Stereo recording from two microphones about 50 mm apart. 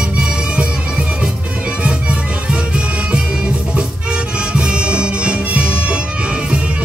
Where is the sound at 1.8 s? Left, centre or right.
Right.